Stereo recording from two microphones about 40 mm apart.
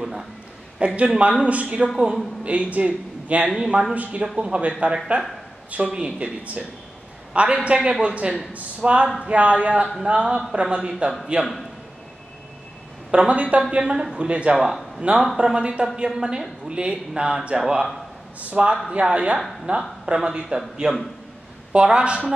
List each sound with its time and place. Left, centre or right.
0.0 s a sound: centre
0.7 s a woman's voice: right
3.4 s speech: centre
3.9 s a woman's voice: right; by 11.1 s centre
13.1 s a woman's voice: right
18.4 s speech: right
18.9 s a woman's voice: right
20.2 s speech: centre
21.7 s a woman's voice: right